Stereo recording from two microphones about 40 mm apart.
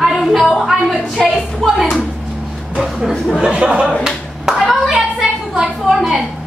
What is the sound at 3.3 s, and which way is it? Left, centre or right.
Speech, right.